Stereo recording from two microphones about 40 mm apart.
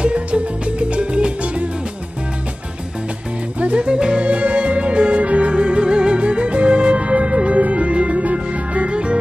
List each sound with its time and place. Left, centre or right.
0.0 s music: right
3.5 s music: right
4.2 s music: right